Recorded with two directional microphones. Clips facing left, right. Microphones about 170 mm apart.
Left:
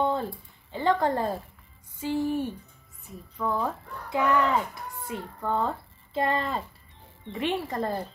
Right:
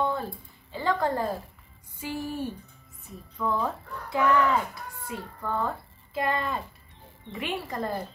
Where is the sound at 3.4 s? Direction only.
10° left (ahead or behind).